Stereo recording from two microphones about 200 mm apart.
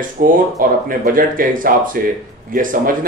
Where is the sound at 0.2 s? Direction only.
45° right (ahead or behind).